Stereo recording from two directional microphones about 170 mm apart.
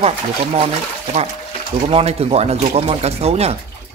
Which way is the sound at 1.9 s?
35° right (ahead or behind).